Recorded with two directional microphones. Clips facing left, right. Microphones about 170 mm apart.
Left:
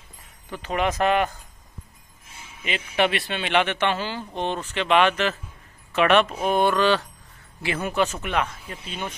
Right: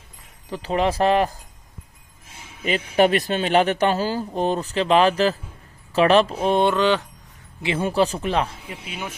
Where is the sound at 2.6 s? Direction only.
40° right (ahead or behind).